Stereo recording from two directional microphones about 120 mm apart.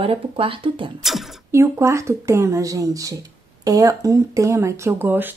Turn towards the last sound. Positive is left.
turn(degrees=-15)  # may be behind; listen again after turning